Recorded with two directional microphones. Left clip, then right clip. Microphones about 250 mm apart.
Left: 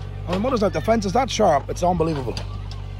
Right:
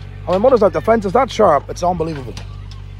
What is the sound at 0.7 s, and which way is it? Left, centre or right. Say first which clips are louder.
Speech: right 6 dB; centre.